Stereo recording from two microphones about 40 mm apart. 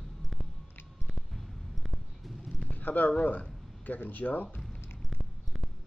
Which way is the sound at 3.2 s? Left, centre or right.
Left.